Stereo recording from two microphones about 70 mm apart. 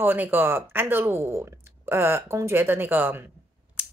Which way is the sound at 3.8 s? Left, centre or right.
Right.